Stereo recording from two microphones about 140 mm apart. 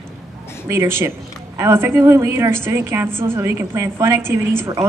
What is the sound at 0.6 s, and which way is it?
A woman's voice, 20° right (ahead or behind).